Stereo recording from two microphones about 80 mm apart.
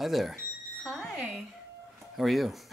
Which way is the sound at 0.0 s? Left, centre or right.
Centre.